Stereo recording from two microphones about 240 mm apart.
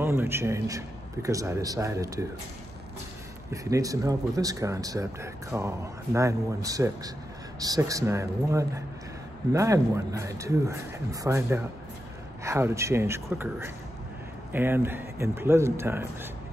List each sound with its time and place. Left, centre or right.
0.0 s speech: centre
3.7 s speech: centre